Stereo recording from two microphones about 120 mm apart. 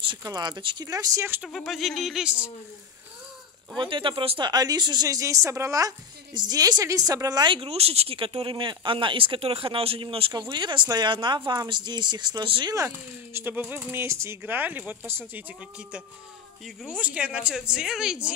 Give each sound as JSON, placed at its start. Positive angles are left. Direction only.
{"t": 0.2, "sound": "a woman's voice", "side_deg": -35}
{"t": 0.8, "sound": "speech", "side_deg": -30}
{"t": 1.4, "sound": "speech", "side_deg": 0}
{"t": 3.7, "sound": "speech", "side_deg": -45}
{"t": 4.5, "sound": "a woman's voice", "side_deg": -35}
{"t": 7.5, "sound": "speech", "side_deg": -55}
{"t": 12.7, "sound": "speech", "side_deg": -20}
{"t": 16.6, "sound": "speech", "side_deg": -5}